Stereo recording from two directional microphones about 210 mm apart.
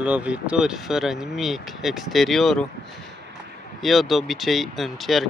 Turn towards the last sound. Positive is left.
turn(degrees=0)  # may be behind; listen again after turning